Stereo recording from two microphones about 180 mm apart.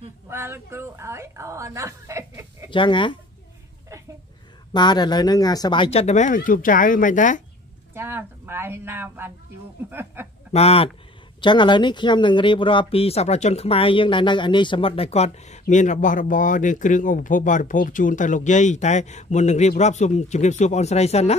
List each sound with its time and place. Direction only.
0.3 s speech: 15° right (ahead or behind)
2.7 s speech: 25° left (ahead or behind)
4.7 s speech: 25° left (ahead or behind); by 7.4 s 45° left (ahead or behind)
7.9 s a woman's voice: 15° right (ahead or behind)
9.8 s a sound: 10° right (ahead or behind)
10.5 s speech: 35° left (ahead or behind)